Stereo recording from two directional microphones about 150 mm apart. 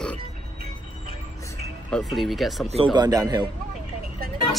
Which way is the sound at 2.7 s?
35° right (ahead or behind).